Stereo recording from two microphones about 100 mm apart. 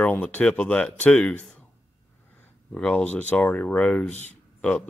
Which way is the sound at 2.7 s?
15° left (ahead or behind).